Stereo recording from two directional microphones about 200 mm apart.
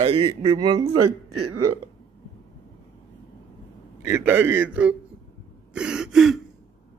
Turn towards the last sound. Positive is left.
turn(degrees=0)  # may be behind; listen again after turning